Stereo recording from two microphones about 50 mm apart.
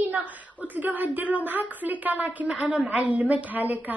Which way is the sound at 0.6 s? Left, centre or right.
Right.